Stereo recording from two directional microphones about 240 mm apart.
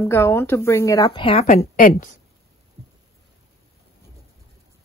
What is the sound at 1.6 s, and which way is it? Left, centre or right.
Speech, left.